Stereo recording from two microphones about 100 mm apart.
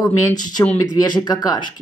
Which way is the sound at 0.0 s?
40° left (ahead or behind).